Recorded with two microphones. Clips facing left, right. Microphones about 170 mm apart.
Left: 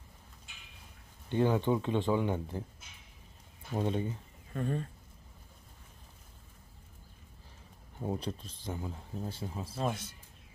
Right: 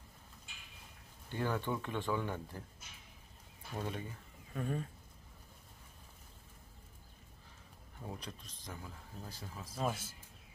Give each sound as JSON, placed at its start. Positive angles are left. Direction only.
{"t": 1.3, "sound": "speech", "side_deg": 20}
{"t": 3.8, "sound": "speech", "side_deg": 25}
{"t": 4.6, "sound": "speech", "side_deg": -5}
{"t": 8.0, "sound": "speech", "side_deg": 30}
{"t": 9.8, "sound": "speech", "side_deg": 0}